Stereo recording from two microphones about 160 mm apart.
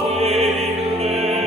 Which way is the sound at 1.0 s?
40° right (ahead or behind).